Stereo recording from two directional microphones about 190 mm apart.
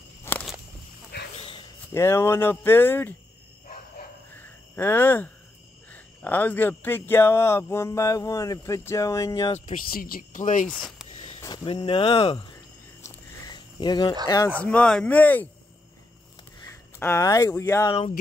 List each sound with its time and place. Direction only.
0.2 s walk: 10° left (ahead or behind)
1.1 s dog: 60° left (ahead or behind)
2.0 s speech: 15° left (ahead or behind)
4.4 s a sound: 10° left (ahead or behind)
5.9 s speech: 10° left (ahead or behind)
9.7 s speech: 50° left (ahead or behind)
10.7 s speech: 5° left (ahead or behind)
11.4 s speech: 25° left (ahead or behind)
13.0 s a sound: 20° left (ahead or behind)
14.2 s speech: 15° left (ahead or behind)
14.6 s speech: 5° left (ahead or behind)
17.0 s speech: 15° left (ahead or behind)